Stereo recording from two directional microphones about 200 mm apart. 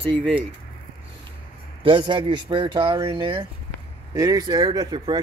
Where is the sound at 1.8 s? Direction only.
25° right (ahead or behind).